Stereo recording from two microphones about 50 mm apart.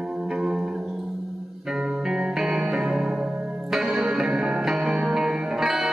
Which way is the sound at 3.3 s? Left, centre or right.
Right.